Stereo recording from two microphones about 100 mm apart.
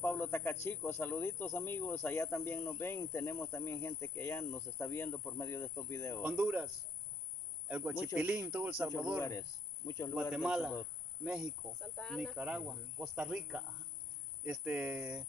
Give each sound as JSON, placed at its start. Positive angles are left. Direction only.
{"t": 0.0, "sound": "a sound", "side_deg": 20}
{"t": 0.7, "sound": "speech", "side_deg": 20}
{"t": 6.2, "sound": "speech", "side_deg": -10}
{"t": 9.2, "sound": "speech", "side_deg": 30}
{"t": 10.3, "sound": "speech", "side_deg": -10}
{"t": 12.0, "sound": "speech", "side_deg": 5}
{"t": 12.4, "sound": "speech", "side_deg": -10}